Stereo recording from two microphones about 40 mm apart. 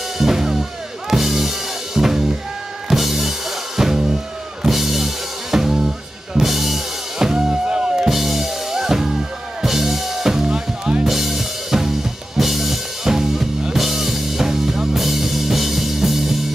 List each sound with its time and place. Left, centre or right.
0.2 s music: centre
8.1 s music: centre
11.1 s music: centre